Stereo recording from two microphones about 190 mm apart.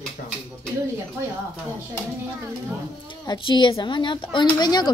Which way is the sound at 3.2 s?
25° left (ahead or behind).